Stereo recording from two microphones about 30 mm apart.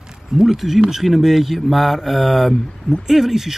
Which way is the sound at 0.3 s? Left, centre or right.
Centre.